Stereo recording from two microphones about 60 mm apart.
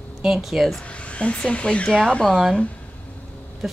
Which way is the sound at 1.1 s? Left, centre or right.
Left.